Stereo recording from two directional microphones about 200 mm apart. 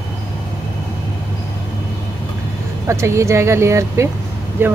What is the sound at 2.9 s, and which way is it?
Speech, 15° right (ahead or behind).